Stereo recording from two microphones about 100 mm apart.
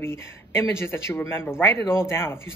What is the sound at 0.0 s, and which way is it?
Speech, 25° left (ahead or behind).